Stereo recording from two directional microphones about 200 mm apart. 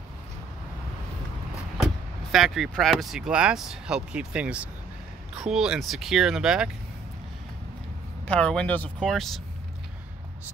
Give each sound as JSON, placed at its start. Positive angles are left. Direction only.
{"t": 2.3, "sound": "speech", "side_deg": 0}
{"t": 8.3, "sound": "speech", "side_deg": 5}